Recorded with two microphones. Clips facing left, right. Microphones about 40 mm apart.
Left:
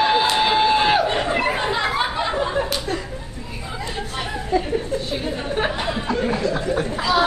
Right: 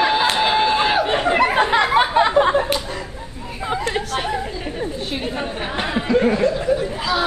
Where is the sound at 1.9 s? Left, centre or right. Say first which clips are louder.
Right 7 dB; right.